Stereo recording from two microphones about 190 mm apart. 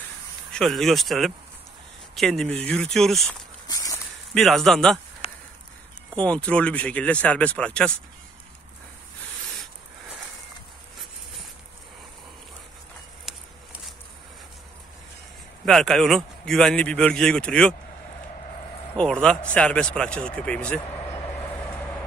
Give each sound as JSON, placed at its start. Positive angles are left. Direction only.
{"t": 0.5, "sound": "a man's voice", "side_deg": 0}
{"t": 3.6, "sound": "walk", "side_deg": 20}
{"t": 4.3, "sound": "a man's voice", "side_deg": 0}
{"t": 5.2, "sound": "a sound", "side_deg": 30}
{"t": 6.1, "sound": "a man's voice", "side_deg": 5}
{"t": 13.3, "sound": "a sound", "side_deg": 0}
{"t": 15.6, "sound": "a man's voice", "side_deg": 0}
{"t": 18.9, "sound": "a man's voice", "side_deg": 5}